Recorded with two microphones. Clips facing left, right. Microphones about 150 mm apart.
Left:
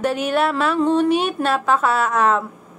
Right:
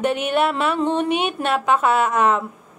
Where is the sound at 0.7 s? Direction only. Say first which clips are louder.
Left 3 dB; 25° right (ahead or behind).